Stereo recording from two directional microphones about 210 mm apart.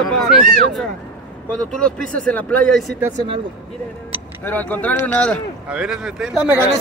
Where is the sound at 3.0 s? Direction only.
20° right (ahead or behind).